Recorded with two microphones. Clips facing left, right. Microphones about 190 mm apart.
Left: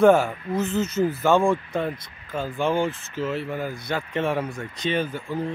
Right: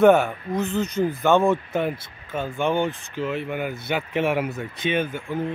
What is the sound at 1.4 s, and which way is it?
Speech, 20° right (ahead or behind).